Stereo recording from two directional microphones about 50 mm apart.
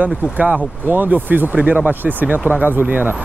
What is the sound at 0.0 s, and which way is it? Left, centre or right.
Speech, right.